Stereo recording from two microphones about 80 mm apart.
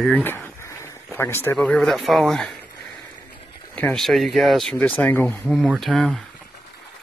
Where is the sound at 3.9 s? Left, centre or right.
Centre.